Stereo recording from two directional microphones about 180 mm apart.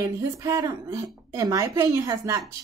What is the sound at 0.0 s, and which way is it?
Speech, 20° right (ahead or behind).